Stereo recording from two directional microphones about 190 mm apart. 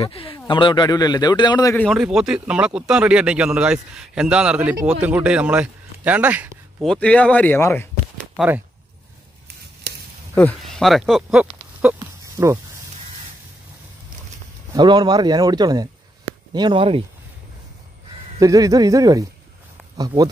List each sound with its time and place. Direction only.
0.0 s a man's voice: 30° left (ahead or behind)
1.8 s a man's voice: centre (ahead or behind)
6.9 s speech: 5° left (ahead or behind)
8.4 s speech: 10° right (ahead or behind)
9.9 s a sound: 60° right (ahead or behind)
10.3 s a man's voice: 5° left (ahead or behind)
12.4 s speech: 15° right (ahead or behind)
14.7 s speech: 20° right (ahead or behind)
18.4 s speech: 20° right (ahead or behind)